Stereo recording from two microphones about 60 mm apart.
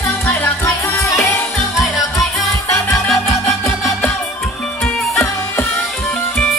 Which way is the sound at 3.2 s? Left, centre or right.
Left.